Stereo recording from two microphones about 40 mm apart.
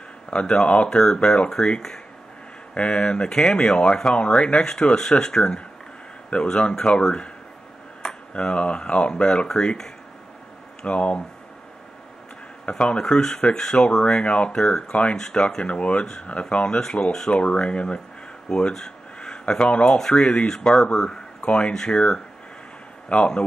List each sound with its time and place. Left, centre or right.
0.3 s speech: left
0.8 s speech: centre
2.7 s speech: left
4.6 s speech: centre
8.3 s speech: left
10.9 s speech: left
12.6 s speech: left
14.0 s speech: left
15.6 s speech: left
16.8 s speech: centre
20.4 s speech: centre
23.0 s speech: left